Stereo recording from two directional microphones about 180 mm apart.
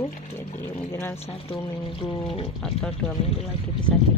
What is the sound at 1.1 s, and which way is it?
Speech, 35° left (ahead or behind).